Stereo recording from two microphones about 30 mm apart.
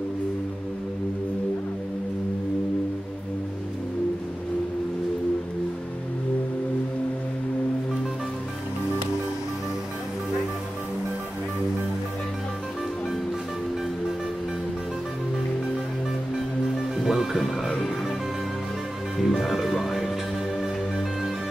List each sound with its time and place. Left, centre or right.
16.9 s music: centre
19.1 s music: centre